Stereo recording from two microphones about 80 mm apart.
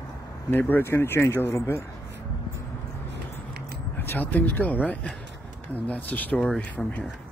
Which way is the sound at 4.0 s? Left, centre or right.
Left.